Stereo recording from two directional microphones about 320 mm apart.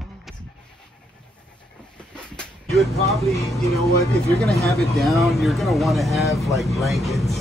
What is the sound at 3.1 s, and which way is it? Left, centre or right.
Speech, centre.